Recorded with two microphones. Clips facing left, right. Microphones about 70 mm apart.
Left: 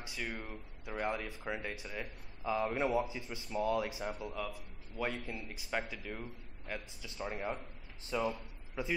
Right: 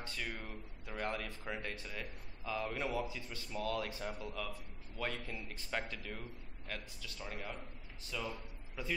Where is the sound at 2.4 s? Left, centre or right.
Left.